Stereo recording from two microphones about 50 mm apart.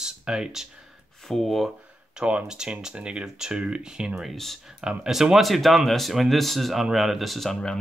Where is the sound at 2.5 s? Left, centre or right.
Centre.